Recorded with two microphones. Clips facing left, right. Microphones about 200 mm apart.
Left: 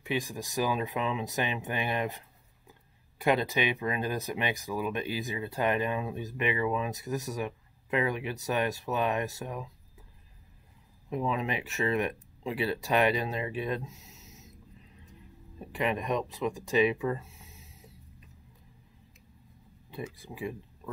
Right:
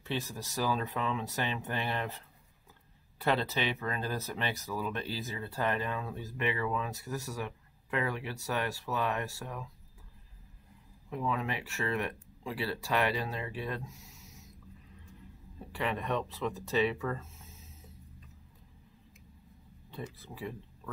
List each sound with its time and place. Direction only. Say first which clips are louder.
0.0 s speech: left 4 dB; 15° left (ahead or behind)
11.1 s speech: left 3 dB; 20° left (ahead or behind)
15.6 s speech: left 4 dB; 15° left (ahead or behind)
19.9 s speech: left 3 dB; 10° left (ahead or behind)